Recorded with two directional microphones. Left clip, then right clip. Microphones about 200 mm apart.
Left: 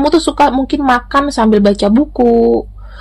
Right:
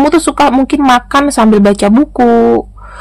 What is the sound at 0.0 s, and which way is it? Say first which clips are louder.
Speech: right 2 dB; 30° right (ahead or behind).